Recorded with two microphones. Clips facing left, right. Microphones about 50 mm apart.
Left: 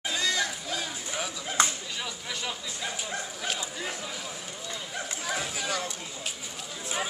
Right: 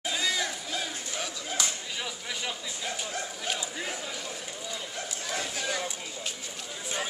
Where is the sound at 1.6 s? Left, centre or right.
Left.